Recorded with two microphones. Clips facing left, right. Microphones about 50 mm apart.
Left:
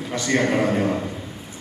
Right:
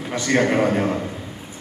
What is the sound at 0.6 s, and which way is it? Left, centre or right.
Speech, centre.